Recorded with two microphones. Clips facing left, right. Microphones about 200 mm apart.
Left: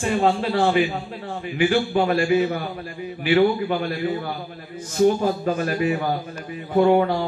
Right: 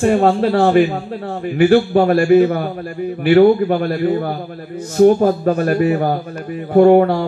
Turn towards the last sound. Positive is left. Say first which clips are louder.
# right 7 dB
turn(degrees=-50)  # may be behind; listen again after turning